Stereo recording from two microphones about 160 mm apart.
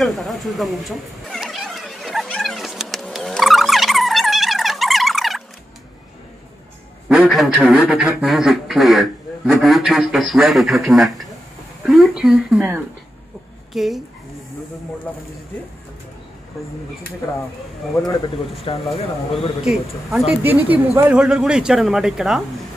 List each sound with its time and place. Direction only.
0.0 s a sound: centre (ahead or behind)
7.1 s a man's voice: 5° right (ahead or behind)
11.8 s a sound: 5° right (ahead or behind)
13.7 s a man's voice: centre (ahead or behind)
18.7 s speech: 35° left (ahead or behind)
19.3 s a man's voice: centre (ahead or behind)